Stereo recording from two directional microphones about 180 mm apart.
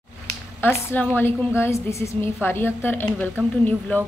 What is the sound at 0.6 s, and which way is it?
A woman's voice, 15° left (ahead or behind).